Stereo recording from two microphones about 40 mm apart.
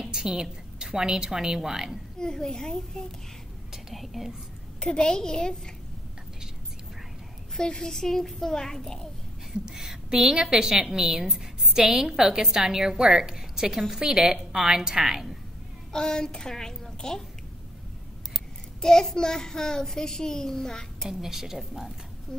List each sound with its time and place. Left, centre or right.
0.0 s a woman's voice: centre
2.1 s a child's voice: centre
3.7 s speech: centre
4.7 s a woman's voice: centre
7.5 s a child's voice: centre
9.5 s a woman's voice: centre
15.9 s a child's voice: centre
18.8 s a child's voice: centre
21.1 s a woman's voice: centre